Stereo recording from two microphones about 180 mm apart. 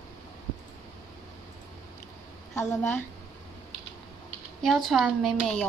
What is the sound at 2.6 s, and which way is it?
Speech, 10° left (ahead or behind).